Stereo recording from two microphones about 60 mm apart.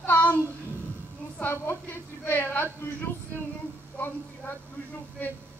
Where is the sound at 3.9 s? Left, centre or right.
Left.